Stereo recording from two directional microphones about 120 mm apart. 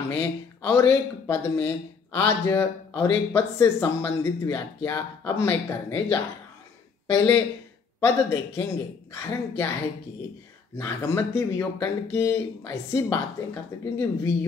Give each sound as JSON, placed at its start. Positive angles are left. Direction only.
{"t": 0.1, "sound": "speech", "side_deg": 20}
{"t": 10.8, "sound": "speech", "side_deg": 20}